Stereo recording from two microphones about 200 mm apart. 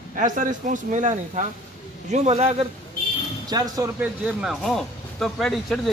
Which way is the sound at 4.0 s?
5° right (ahead or behind).